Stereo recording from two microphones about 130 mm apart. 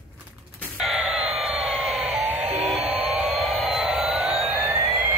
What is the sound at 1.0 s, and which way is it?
Vehicle, 5° right (ahead or behind).